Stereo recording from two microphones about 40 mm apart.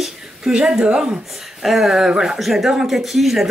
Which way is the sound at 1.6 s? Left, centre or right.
Centre.